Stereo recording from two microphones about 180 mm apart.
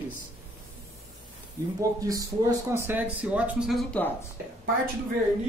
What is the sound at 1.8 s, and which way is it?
Speech, 20° right (ahead or behind).